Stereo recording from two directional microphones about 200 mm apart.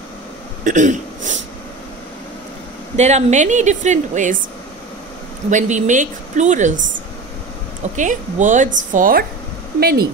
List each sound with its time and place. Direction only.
0.7 s speech: 40° right (ahead or behind)
3.0 s speech: 35° right (ahead or behind)
5.5 s speech: 40° right (ahead or behind)
7.9 s speech: 40° right (ahead or behind)